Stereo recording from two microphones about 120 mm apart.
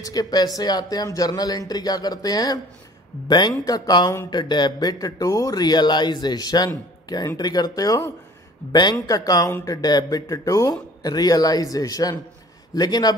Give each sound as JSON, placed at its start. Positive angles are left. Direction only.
{"t": 0.0, "sound": "speech", "side_deg": 30}